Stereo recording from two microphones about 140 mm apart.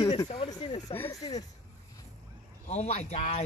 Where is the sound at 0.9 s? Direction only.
15° left (ahead or behind).